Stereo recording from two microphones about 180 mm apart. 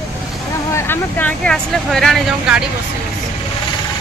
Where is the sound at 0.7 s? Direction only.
10° left (ahead or behind); by 2.7 s 5° right (ahead or behind).